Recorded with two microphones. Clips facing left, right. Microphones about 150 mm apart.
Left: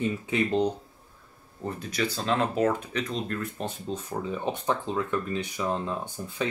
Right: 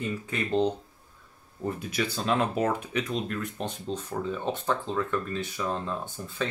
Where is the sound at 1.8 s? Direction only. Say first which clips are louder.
Left 1 dB; 10° right (ahead or behind).